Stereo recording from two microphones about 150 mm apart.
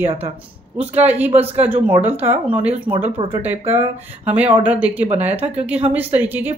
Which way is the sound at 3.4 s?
10° right (ahead or behind).